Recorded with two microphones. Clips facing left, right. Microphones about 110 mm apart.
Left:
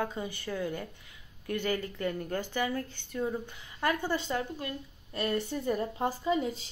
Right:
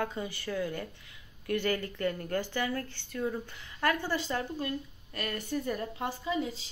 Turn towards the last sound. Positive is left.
turn(degrees=40)  # may be behind; listen again after turning